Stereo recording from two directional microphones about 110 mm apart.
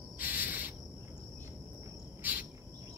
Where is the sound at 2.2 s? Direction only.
15° right (ahead or behind).